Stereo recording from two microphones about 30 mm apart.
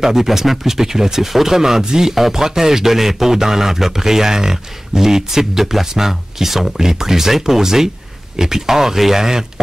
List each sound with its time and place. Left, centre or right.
0.0 s a man's voice: centre